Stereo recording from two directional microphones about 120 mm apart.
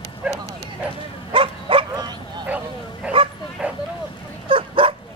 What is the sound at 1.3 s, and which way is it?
Bow-wow, 50° right (ahead or behind).